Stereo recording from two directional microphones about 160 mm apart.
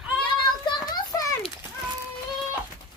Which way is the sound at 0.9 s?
20° left (ahead or behind).